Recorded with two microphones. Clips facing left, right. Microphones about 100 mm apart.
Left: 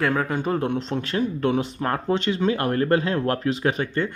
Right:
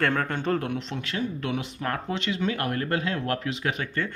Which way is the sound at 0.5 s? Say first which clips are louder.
Left 4 dB; 30° left (ahead or behind).